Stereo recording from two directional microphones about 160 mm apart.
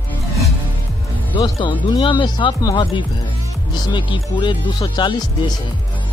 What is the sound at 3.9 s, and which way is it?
Speech, 30° left (ahead or behind).